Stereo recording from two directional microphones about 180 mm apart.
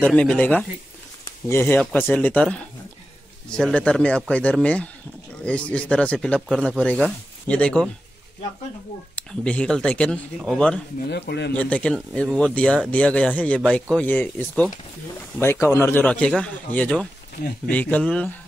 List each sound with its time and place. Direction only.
0.0 s speech: 5° left (ahead or behind)
1.2 s a sound: 15° left (ahead or behind)
1.8 s speech: 5° left (ahead or behind)
9.1 s speech: 5° left (ahead or behind)
11.1 s speech: 65° left (ahead or behind)
11.5 s speech: 5° left (ahead or behind)